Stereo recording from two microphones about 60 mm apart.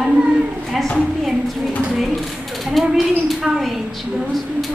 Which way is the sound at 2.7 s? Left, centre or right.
Centre.